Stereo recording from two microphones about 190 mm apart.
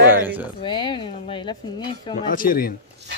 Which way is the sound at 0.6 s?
25° left (ahead or behind).